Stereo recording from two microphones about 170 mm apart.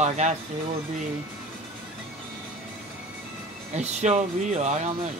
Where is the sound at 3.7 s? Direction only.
40° right (ahead or behind).